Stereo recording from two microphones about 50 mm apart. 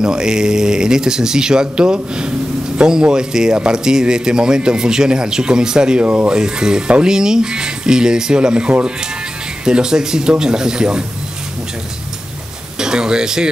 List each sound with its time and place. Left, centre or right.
0.0 s speech: centre
12.7 s speech: centre